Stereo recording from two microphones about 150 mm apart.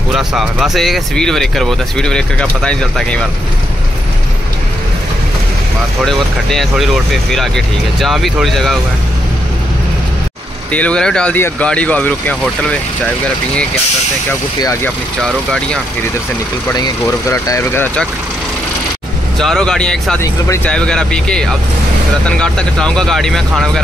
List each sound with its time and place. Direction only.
0.1 s speech: centre (ahead or behind)
6.0 s speech: centre (ahead or behind)
10.7 s speech: 10° left (ahead or behind)
14.6 s speech: 20° left (ahead or behind)
17.0 s speech: 20° left (ahead or behind)
19.3 s speech: centre (ahead or behind)